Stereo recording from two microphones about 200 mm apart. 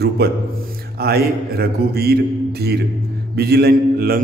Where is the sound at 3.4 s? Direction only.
55° right (ahead or behind).